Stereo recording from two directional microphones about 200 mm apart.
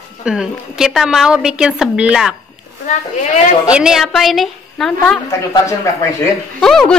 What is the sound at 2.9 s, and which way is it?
Speech, 40° left (ahead or behind).